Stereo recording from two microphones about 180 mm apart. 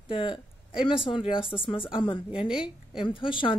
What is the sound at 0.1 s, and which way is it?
Speech, 30° left (ahead or behind).